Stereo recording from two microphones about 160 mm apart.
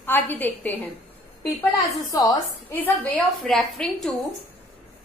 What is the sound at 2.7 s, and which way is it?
A woman's voice, 10° left (ahead or behind).